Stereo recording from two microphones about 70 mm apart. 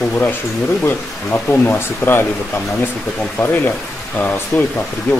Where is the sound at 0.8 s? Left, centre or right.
Left.